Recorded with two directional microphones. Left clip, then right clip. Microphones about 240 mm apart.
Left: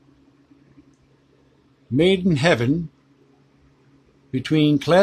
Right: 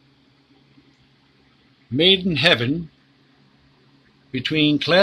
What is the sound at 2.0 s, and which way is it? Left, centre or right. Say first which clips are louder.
Speech: right 2 dB; centre.